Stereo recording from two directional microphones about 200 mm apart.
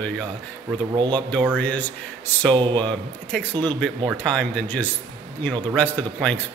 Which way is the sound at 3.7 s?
5° left (ahead or behind).